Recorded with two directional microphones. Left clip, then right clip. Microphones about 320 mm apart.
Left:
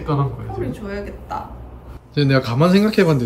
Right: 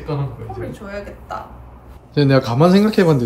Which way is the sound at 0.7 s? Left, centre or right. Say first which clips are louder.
Left 1 dB; centre.